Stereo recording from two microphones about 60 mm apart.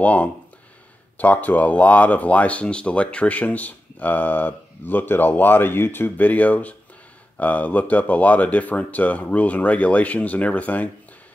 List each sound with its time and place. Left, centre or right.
0.0 s speech: left